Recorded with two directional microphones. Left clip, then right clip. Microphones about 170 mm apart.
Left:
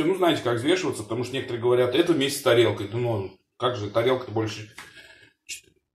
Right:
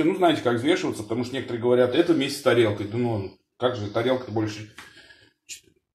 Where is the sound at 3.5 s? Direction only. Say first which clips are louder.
Even; 45° right (ahead or behind).